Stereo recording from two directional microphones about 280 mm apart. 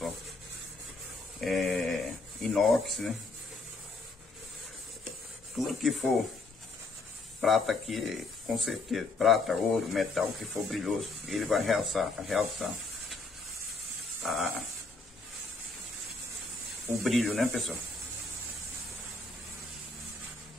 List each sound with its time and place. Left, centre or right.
1.4 s mantra: centre
2.5 s speech: centre
5.6 s speech: centre
7.4 s speech: centre
14.2 s a sound: centre
17.0 s speech: centre